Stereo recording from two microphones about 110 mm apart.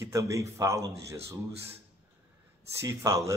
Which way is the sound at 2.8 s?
30° right (ahead or behind).